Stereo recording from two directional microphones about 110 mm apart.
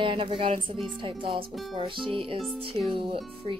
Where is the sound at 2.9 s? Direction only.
55° right (ahead or behind).